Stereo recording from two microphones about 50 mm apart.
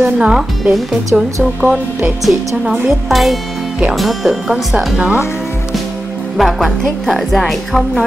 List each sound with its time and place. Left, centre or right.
0.0 s speech: right
3.1 s a woman's voice: centre
4.9 s speech: right
6.3 s a woman's voice: centre